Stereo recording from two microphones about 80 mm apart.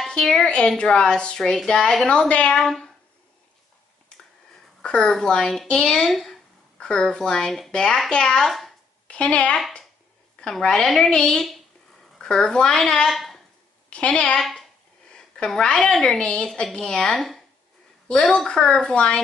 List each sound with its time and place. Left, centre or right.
0.1 s a woman's voice: centre
4.8 s speech: centre
9.0 s a woman's voice: centre
13.8 s a woman's voice: centre
14.4 s a woman's voice: centre